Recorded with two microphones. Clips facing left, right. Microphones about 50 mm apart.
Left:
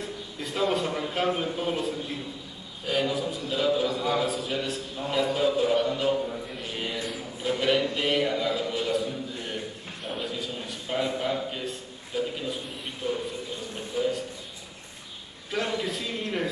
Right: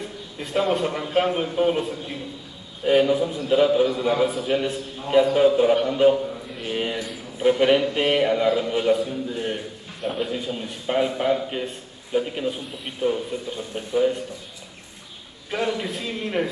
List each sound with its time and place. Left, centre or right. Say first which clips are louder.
0.4 s a sound: right 5 dB; centre
0.7 s a man's voice: right 5 dB; centre
6.6 s a sound: right 9 dB; right
7.4 s a man's voice: right 7 dB; right
10.0 s a man's voice: right 7 dB; centre
10.3 s a man's voice: right 5 dB; right
15.5 s a man's voice: right 3 dB; centre